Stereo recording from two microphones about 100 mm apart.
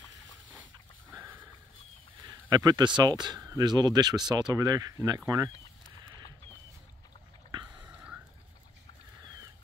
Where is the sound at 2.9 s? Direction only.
45° right (ahead or behind).